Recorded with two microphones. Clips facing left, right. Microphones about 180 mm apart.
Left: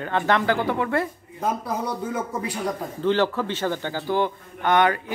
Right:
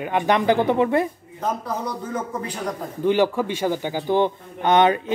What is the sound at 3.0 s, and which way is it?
A man's voice, 15° right (ahead or behind).